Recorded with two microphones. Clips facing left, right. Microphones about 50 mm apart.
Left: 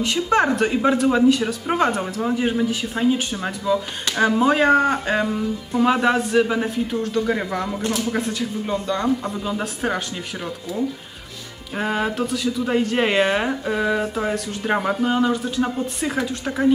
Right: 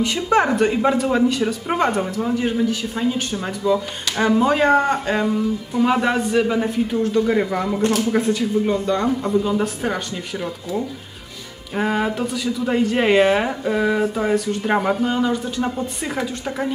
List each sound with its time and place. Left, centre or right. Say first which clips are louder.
0.0 s speech: right 1 dB; centre